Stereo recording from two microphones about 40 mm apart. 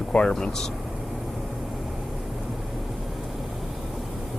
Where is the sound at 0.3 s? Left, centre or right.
Centre.